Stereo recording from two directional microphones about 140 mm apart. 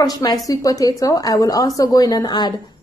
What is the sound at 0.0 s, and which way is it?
A woman's voice, 25° left (ahead or behind).